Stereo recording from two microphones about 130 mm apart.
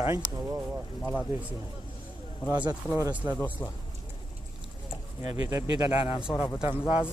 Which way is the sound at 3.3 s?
15° left (ahead or behind).